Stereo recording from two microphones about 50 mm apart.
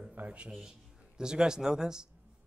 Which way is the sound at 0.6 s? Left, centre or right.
Centre.